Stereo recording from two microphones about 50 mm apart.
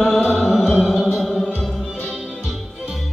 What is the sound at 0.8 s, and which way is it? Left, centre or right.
Music, centre.